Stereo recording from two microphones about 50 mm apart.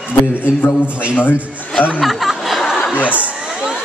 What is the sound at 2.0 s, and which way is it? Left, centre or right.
Snicker, centre.